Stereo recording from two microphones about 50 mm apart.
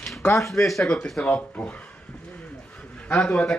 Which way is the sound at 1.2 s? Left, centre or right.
Left.